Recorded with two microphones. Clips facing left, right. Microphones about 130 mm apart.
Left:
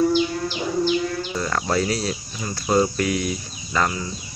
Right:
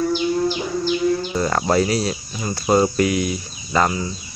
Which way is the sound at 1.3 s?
25° right (ahead or behind).